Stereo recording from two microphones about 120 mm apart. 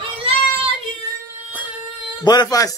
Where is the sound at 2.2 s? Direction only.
35° left (ahead or behind).